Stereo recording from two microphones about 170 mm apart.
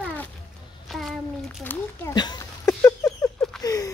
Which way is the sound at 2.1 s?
25° left (ahead or behind).